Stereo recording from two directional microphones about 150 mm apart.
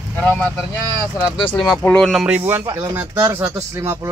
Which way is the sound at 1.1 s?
5° right (ahead or behind).